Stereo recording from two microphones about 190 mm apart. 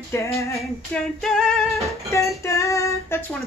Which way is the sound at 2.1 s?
15° left (ahead or behind).